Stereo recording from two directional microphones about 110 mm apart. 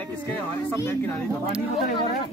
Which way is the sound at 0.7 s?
25° left (ahead or behind).